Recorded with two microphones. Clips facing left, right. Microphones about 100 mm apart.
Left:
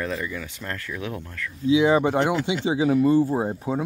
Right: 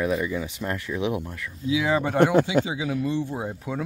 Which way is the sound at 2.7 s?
40° left (ahead or behind).